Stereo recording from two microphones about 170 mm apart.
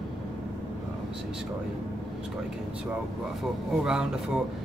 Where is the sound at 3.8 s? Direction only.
5° right (ahead or behind).